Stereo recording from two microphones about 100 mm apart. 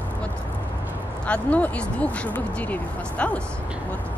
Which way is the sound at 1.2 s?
15° left (ahead or behind).